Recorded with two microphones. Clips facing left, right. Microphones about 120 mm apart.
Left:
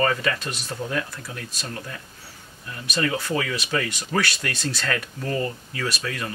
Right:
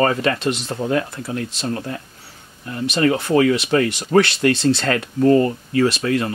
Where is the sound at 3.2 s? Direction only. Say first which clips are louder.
Right 11 dB; 45° right (ahead or behind).